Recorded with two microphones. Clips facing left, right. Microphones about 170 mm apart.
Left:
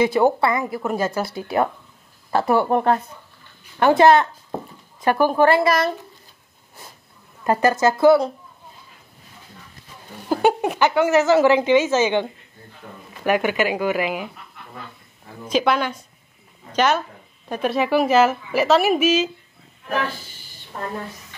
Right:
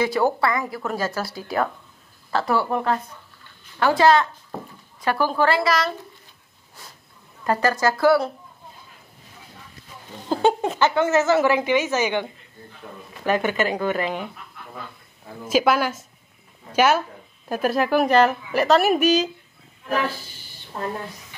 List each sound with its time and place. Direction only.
0.0 s a woman's voice: 20° left (ahead or behind)
2.3 s a woman's voice: 20° left (ahead or behind)
3.8 s a woman's voice: 20° left (ahead or behind)
5.1 s a woman's voice: 15° left (ahead or behind)
5.4 s a woman's voice: 50° left (ahead or behind)
7.4 s a woman's voice: 20° left (ahead or behind)
10.3 s a woman's voice: 10° left (ahead or behind)
15.4 s a woman's voice: 5° right (ahead or behind)